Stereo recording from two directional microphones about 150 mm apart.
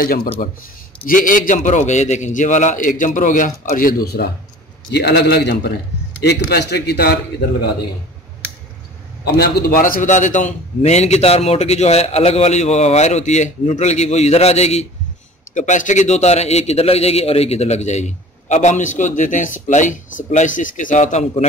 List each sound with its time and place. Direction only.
0.0 s a man's voice: 70° left (ahead or behind); by 7.2 s 90° left
9.2 s a man's voice: 90° left; by 21.5 s 50° left (ahead or behind)